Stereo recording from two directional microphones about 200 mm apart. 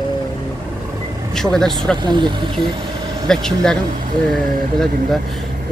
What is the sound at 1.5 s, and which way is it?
Speech, 5° left (ahead or behind).